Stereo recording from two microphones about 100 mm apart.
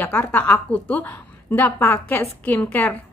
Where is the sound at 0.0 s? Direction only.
20° left (ahead or behind).